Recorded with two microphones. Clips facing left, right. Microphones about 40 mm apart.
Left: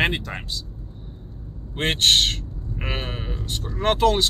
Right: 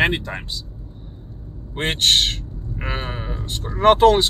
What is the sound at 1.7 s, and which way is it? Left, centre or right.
Speech, centre.